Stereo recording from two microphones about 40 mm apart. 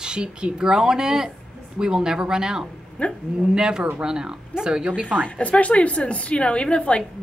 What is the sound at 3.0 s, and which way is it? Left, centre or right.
Speech, left.